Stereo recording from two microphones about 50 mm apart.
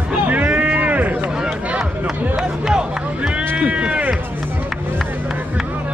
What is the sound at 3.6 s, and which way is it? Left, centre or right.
Music, right.